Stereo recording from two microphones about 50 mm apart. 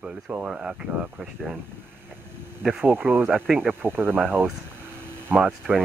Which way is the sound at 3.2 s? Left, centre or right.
Centre.